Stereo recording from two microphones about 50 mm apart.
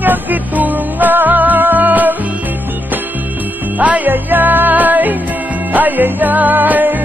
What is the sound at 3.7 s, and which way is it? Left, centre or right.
Music, right.